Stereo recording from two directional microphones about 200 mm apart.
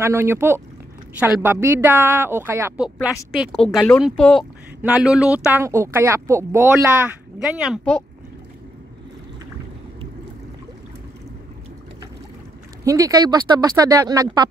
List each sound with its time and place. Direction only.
0.0 s speech: 10° right (ahead or behind)
12.8 s speech: 15° right (ahead or behind)